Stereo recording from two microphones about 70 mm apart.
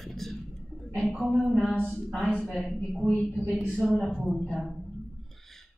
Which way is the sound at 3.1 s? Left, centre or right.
Left.